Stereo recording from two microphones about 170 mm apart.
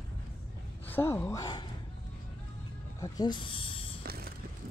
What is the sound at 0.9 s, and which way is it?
Speech, 10° left (ahead or behind).